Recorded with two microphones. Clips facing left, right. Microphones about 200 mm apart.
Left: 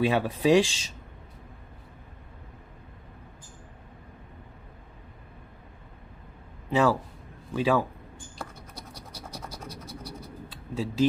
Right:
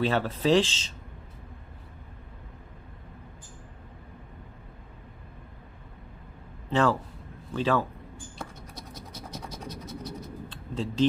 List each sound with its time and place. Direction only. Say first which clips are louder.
0.0 s speech: left 2 dB; 10° left (ahead or behind)
6.7 s a man's voice: left 1 dB; 10° left (ahead or behind)
8.5 s scratch: right 1 dB; 20° right (ahead or behind)
9.4 s scratch: right 1 dB; centre (ahead or behind)
10.5 s a sound: left 1 dB; 10° left (ahead or behind)